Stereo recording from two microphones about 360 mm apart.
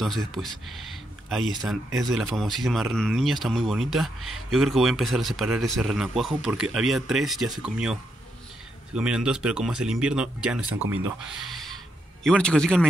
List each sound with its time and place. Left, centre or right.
0.0 s speech: centre
10.8 s speech: right
11.2 s music: centre